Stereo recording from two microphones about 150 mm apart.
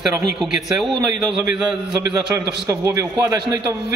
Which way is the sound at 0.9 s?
35° right (ahead or behind).